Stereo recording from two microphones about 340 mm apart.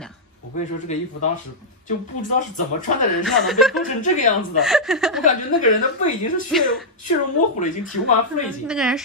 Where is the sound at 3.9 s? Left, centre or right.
Left.